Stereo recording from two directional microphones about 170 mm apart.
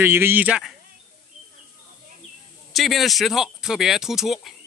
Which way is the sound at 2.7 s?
Centre (ahead or behind).